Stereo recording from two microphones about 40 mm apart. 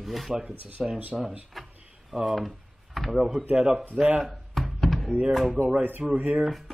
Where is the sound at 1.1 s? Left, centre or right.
Centre.